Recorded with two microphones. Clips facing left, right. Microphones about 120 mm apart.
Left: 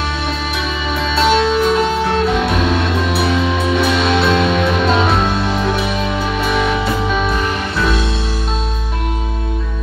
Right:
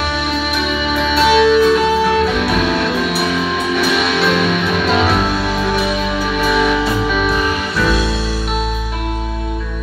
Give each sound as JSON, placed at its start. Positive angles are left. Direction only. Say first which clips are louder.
{"t": 1.1, "sound": "music", "louder": "right 3 dB", "side_deg": 25}
{"t": 3.3, "sound": "music", "louder": "left 1 dB", "side_deg": 25}
{"t": 6.4, "sound": "music", "louder": "right 3 dB", "side_deg": 25}